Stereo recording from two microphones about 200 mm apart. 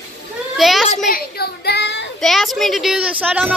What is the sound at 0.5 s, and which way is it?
Children playing, centre (ahead or behind).